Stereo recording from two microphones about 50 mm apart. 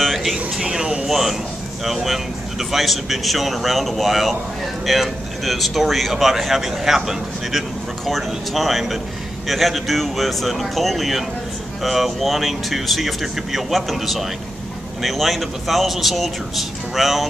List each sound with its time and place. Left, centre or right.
0.0 s a sound: centre
0.6 s speech: centre
1.0 s speech: centre
8.0 s speech: centre